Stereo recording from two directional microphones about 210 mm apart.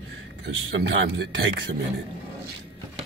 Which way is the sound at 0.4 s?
60° right (ahead or behind).